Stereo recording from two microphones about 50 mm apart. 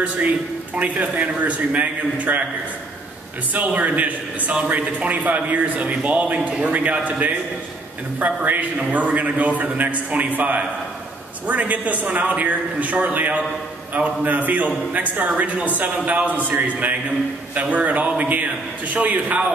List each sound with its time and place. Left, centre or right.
0.7 s a man's voice: right
3.5 s a man's voice: right